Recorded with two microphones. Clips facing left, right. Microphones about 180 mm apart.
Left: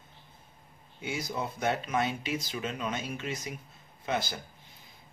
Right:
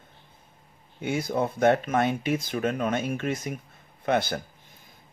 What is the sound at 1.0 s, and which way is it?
Speech, 55° right (ahead or behind).